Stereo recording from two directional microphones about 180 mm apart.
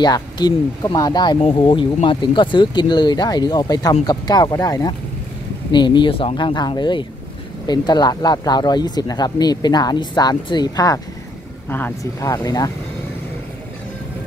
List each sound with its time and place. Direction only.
0.0 s speech: 20° left (ahead or behind)